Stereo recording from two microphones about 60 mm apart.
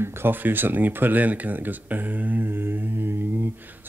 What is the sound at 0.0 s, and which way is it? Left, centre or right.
Speech, right.